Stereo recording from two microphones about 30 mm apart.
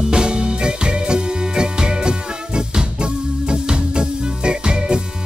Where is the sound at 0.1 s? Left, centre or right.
Right.